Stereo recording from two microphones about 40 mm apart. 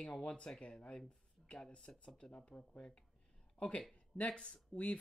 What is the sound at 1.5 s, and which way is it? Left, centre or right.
Speech, left.